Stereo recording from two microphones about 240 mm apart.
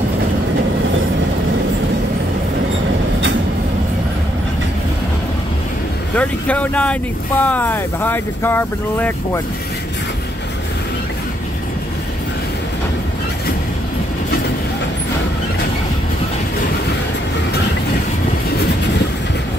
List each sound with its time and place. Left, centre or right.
6.1 s speech: centre